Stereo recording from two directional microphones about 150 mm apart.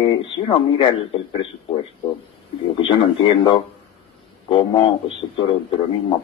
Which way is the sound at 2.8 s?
35° left (ahead or behind).